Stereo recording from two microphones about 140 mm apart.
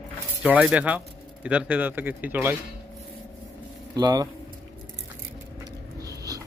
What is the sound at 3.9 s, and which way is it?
Speech, 30° right (ahead or behind).